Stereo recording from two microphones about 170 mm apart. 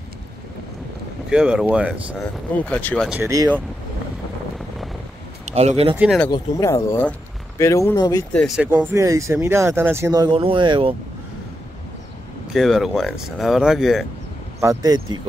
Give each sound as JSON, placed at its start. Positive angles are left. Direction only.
{"t": 1.3, "sound": "speech", "side_deg": -5}
{"t": 2.5, "sound": "speech", "side_deg": 10}
{"t": 5.4, "sound": "speech", "side_deg": -40}
{"t": 5.9, "sound": "speech", "side_deg": -5}
{"t": 6.3, "sound": "speech", "side_deg": 15}
{"t": 8.3, "sound": "speech", "side_deg": 5}
{"t": 8.5, "sound": "speech", "side_deg": -15}
{"t": 12.5, "sound": "speech", "side_deg": 0}
{"t": 14.6, "sound": "speech", "side_deg": -20}